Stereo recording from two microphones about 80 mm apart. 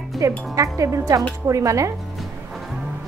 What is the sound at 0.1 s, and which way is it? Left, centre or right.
Speech, centre.